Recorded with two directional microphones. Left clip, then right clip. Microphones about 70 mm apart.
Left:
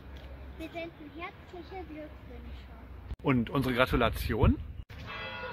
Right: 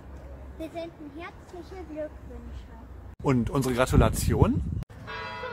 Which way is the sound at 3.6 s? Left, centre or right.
Right.